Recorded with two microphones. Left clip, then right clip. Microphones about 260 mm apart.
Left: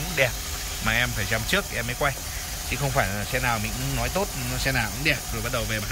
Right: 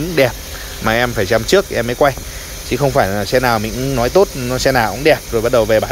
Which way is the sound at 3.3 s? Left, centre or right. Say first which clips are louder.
Right 12 dB; centre.